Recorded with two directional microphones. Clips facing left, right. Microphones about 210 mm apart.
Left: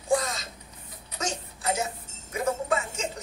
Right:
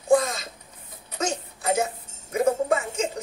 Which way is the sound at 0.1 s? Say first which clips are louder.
Right 6 dB; 55° right (ahead or behind).